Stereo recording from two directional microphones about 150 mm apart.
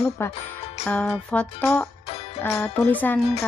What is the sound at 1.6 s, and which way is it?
A woman's voice, 20° left (ahead or behind).